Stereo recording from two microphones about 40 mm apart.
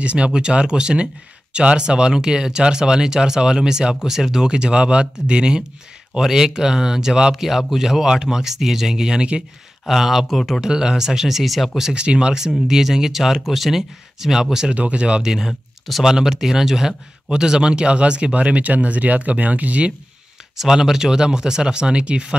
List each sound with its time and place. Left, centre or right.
0.0 s speech: right; by 4.5 s centre
4.5 s speech: right
6.1 s speech: centre
10.6 s speech: centre
11.9 s speech: right
12.4 s speech: centre
14.7 s speech: right
15.2 s speech: centre; by 19.9 s right
20.5 s speech: centre